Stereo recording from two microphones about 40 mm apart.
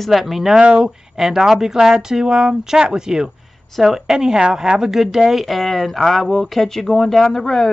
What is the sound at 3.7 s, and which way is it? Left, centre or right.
A woman's voice, centre.